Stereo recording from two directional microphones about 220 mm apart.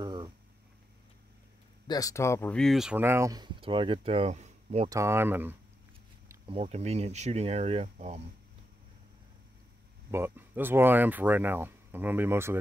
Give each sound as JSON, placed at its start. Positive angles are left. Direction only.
{"t": 0.0, "sound": "a sound", "side_deg": -20}
{"t": 1.9, "sound": "speech", "side_deg": 15}
{"t": 4.8, "sound": "speech", "side_deg": -15}
{"t": 6.4, "sound": "speech", "side_deg": -25}
{"t": 10.1, "sound": "speech", "side_deg": -10}